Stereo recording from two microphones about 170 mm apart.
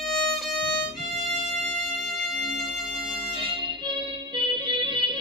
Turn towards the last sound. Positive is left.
turn(degrees=-30)  # may be behind; listen again after turning